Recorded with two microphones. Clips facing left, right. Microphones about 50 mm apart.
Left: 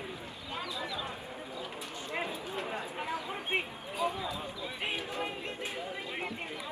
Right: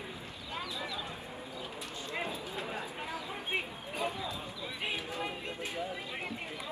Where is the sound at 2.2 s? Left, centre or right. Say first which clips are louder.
Left 1 dB; left.